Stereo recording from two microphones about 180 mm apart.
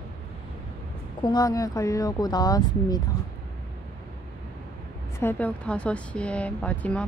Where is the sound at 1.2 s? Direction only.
20° left (ahead or behind).